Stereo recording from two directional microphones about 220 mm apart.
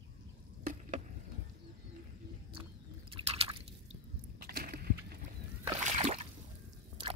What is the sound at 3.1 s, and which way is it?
Drip, 25° right (ahead or behind).